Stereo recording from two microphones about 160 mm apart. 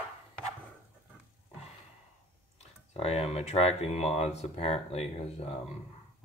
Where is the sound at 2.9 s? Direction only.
40° left (ahead or behind).